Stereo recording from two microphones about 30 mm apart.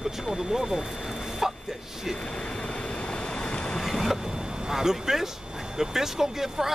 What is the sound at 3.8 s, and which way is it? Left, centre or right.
Boat, centre.